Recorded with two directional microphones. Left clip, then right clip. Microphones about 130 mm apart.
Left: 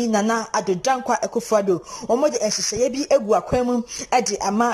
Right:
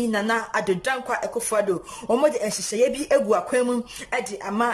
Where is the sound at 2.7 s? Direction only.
15° left (ahead or behind).